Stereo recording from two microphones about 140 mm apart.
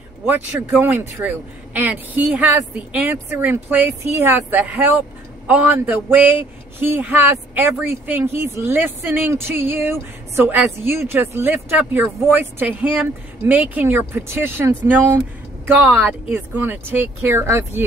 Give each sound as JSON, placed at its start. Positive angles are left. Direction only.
{"t": 0.3, "sound": "speech", "side_deg": -15}